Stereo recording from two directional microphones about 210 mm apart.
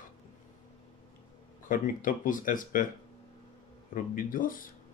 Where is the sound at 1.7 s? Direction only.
40° left (ahead or behind).